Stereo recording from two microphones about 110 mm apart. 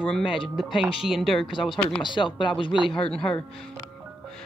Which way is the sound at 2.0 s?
45° left (ahead or behind).